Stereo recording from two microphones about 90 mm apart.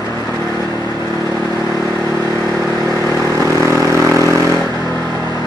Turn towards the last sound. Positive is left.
turn(degrees=-35)  # may be behind; listen again after turning